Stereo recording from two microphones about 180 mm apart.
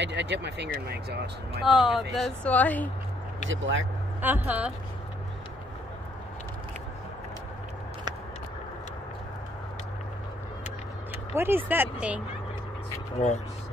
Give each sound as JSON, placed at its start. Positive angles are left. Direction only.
{"t": 0.0, "sound": "speech", "side_deg": -75}
{"t": 1.6, "sound": "speech", "side_deg": 0}
{"t": 3.4, "sound": "speech", "side_deg": -90}
{"t": 4.2, "sound": "speech", "side_deg": -10}
{"t": 11.3, "sound": "speech", "side_deg": -10}